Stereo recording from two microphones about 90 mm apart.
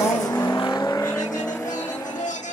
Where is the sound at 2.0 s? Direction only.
50° left (ahead or behind).